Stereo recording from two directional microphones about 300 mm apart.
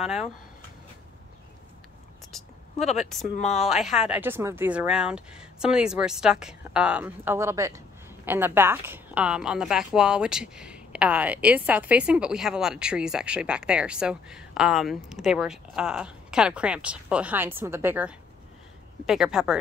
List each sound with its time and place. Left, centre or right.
0.0 s a woman's voice: centre
2.8 s speech: left
3.5 s a woman's voice: centre